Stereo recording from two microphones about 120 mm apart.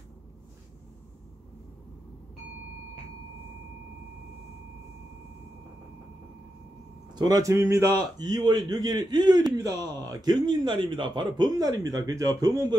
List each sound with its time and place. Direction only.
7.2 s speech: 35° right (ahead or behind)